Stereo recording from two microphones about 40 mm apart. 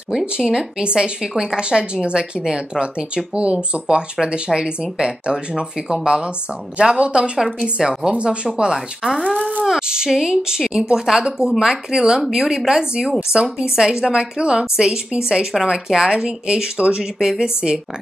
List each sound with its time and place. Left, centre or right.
0.1 s speech: centre
8.1 s a woman's voice: right; by 11.6 s centre
11.6 s speech: centre